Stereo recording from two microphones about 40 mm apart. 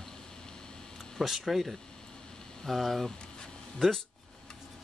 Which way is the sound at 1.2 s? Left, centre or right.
Centre.